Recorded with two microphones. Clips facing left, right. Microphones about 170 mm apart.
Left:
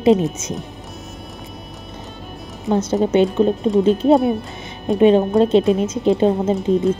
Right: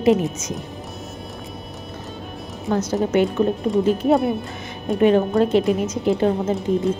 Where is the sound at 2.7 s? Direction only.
25° left (ahead or behind).